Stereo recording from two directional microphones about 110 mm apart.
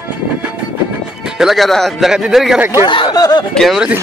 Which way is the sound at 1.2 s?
5° right (ahead or behind).